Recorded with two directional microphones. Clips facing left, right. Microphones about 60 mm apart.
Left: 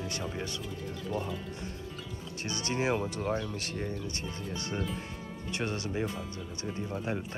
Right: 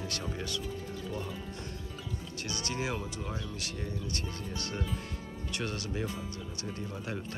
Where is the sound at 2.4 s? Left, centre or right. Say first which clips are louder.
Left 5 dB; left.